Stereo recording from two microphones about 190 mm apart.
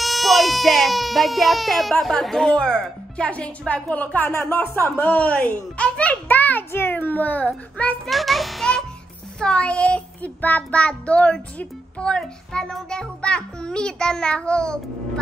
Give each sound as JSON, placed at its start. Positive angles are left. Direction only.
{"t": 0.0, "sound": "speech", "side_deg": 0}